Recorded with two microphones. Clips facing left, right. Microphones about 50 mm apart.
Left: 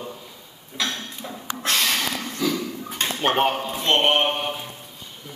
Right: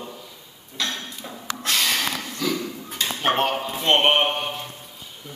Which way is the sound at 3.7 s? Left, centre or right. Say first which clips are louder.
Right 2 dB; centre.